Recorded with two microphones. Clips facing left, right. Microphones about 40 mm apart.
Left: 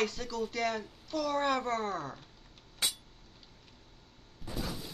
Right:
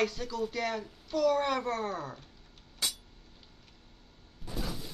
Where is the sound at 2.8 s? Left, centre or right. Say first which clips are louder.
Left 1 dB; left.